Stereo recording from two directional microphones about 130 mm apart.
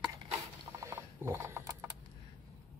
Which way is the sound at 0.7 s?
20° right (ahead or behind).